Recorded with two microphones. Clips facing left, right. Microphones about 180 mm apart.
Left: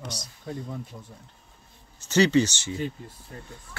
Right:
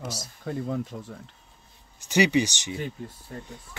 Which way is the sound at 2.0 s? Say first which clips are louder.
Left 2 dB; 15° right (ahead or behind).